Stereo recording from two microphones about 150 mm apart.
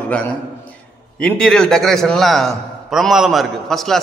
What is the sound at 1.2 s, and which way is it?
A man's voice, 5° left (ahead or behind).